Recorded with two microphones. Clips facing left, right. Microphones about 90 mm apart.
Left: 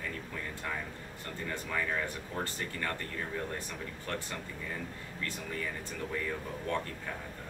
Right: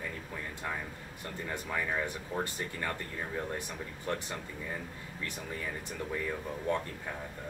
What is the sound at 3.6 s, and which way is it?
Speech, 15° right (ahead or behind).